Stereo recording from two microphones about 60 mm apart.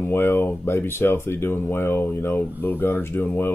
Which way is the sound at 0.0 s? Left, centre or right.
Left.